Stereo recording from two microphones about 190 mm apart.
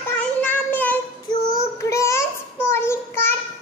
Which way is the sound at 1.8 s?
15° left (ahead or behind).